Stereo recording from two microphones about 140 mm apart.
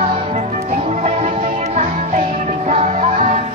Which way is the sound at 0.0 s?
35° right (ahead or behind).